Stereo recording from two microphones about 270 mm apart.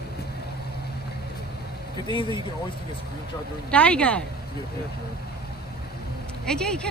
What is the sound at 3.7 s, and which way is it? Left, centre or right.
Speech, centre.